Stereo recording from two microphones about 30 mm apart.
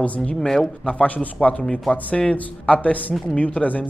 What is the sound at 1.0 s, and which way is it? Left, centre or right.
Speech, left.